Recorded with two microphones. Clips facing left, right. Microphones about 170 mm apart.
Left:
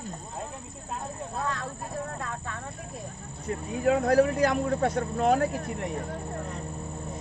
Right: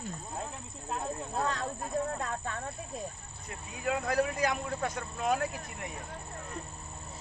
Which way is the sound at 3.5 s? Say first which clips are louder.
Left 9 dB; 50° left (ahead or behind).